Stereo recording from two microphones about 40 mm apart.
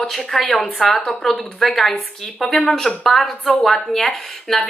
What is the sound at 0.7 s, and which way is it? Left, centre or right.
Speech, centre.